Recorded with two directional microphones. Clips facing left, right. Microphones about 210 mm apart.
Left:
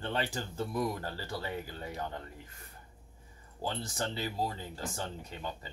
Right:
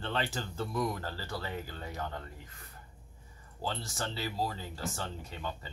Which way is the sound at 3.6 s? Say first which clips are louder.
Left 1 dB; 15° left (ahead or behind).